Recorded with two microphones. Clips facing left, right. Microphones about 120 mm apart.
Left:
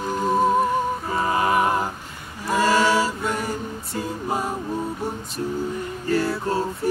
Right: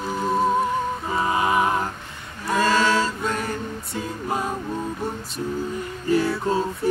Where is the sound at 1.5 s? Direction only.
5° left (ahead or behind).